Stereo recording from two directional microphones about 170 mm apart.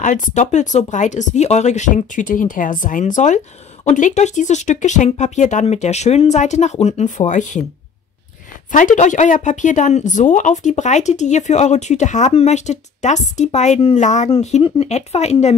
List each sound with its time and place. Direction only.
0.0 s speech: 45° left (ahead or behind)
8.7 s speech: 50° left (ahead or behind)